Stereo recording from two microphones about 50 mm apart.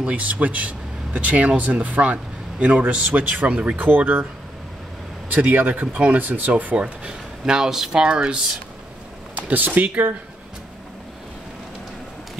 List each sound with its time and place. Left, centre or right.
0.0 s a man's voice: right
3.7 s speech: right
5.3 s speech: right
6.5 s a man's voice: right
7.4 s speech: centre
9.3 s a sound: right
9.7 s a man's voice: right